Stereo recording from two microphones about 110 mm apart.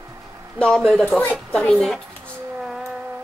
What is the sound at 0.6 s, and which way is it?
Speech, 5° left (ahead or behind).